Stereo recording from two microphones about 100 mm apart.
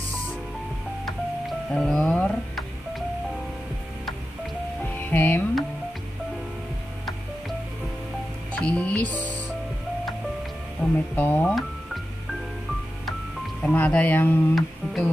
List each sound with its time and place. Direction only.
1.7 s speech: 5° left (ahead or behind)
4.9 s music: 20° left (ahead or behind)
8.5 s music: 10° left (ahead or behind)
10.8 s speech: 15° left (ahead or behind)
11.4 s music: centre (ahead or behind)
13.6 s speech: 10° left (ahead or behind)